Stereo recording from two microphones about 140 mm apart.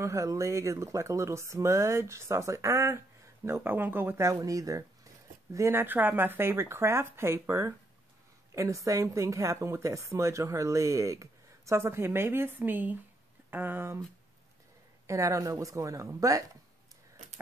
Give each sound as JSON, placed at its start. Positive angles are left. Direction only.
{"t": 0.0, "sound": "speech", "side_deg": -20}
{"t": 15.0, "sound": "speech", "side_deg": -25}